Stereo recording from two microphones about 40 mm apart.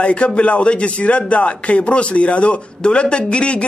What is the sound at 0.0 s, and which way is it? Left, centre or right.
A man's voice, left.